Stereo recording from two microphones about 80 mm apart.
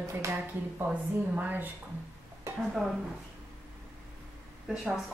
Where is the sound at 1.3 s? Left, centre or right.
Right.